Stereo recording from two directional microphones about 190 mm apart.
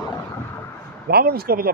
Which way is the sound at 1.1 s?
55° right (ahead or behind).